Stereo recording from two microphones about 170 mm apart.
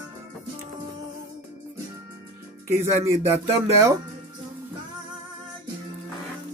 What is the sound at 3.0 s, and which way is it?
Speech, 15° right (ahead or behind).